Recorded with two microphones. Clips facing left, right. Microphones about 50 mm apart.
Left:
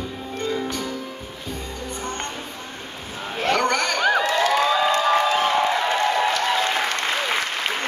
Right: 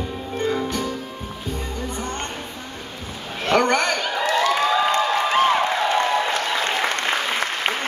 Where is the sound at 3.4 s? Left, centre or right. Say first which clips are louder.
Right 2 dB; right.